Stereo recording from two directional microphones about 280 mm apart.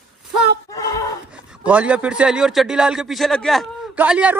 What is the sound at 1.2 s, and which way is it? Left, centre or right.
A man's voice, centre.